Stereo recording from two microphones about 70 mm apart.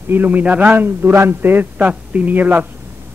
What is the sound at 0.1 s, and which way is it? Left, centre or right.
Speech, right.